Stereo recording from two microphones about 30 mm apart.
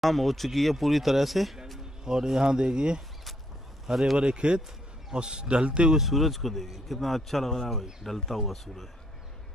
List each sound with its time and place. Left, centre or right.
0.0 s speech: centre
2.2 s speech: centre
4.2 s a man's voice: right
5.9 s speech: centre